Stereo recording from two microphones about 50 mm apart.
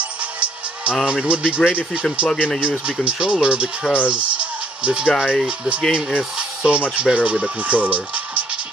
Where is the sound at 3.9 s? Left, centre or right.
Right.